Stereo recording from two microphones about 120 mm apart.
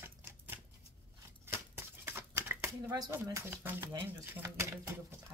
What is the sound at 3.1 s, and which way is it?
Speech, 20° right (ahead or behind).